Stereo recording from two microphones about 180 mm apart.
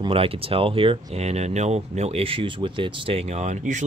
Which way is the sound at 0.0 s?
30° right (ahead or behind).